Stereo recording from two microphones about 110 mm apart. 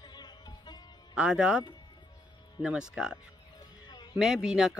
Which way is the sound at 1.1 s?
10° right (ahead or behind).